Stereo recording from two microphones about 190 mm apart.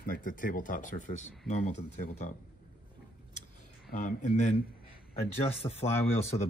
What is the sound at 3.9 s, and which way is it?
Speech, 55° left (ahead or behind).